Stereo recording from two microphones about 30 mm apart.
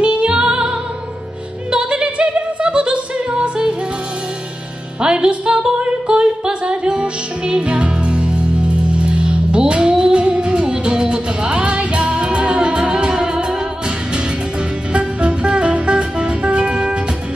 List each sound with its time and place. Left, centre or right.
0.0 s music: right
5.0 s music: right
5.3 s female singing: right
5.8 s singing: right
7.0 s music: right
14.9 s music: right
16.5 s music: right